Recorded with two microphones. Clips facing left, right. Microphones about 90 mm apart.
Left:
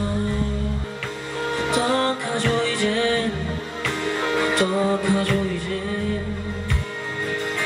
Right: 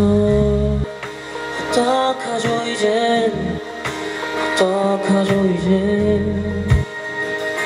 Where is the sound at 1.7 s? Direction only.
20° right (ahead or behind).